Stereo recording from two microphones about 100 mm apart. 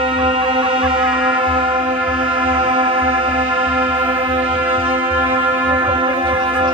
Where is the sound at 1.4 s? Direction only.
60° right (ahead or behind).